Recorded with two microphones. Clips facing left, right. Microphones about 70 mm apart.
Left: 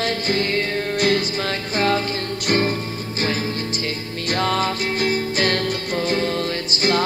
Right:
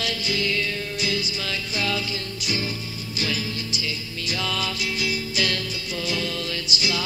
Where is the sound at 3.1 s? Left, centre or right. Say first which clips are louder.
Left 5 dB; left.